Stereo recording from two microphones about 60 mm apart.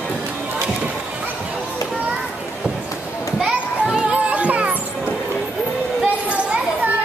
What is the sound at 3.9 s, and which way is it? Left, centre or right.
Music, right.